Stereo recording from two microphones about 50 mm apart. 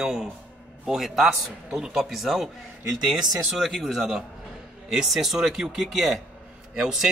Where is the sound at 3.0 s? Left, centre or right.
Centre.